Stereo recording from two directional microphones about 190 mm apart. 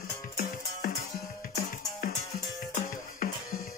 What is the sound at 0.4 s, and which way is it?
Music, 45° left (ahead or behind).